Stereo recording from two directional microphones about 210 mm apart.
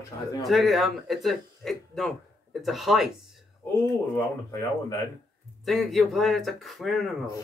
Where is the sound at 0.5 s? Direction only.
Centre (ahead or behind).